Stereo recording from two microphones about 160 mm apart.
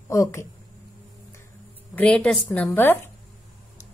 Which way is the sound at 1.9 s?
5° left (ahead or behind).